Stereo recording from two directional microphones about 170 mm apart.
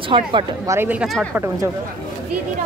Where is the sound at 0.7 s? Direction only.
10° right (ahead or behind).